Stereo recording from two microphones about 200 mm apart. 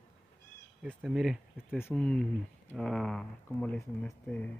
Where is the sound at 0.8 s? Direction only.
5° right (ahead or behind).